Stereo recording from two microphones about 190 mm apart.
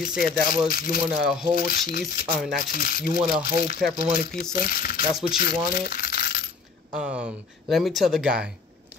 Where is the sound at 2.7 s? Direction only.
50° left (ahead or behind).